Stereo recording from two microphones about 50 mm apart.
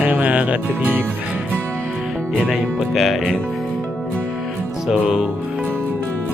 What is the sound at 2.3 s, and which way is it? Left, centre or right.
Music, centre.